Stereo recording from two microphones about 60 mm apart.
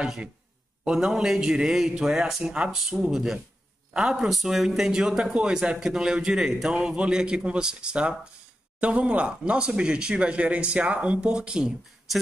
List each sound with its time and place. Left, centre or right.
0.0 s speech: centre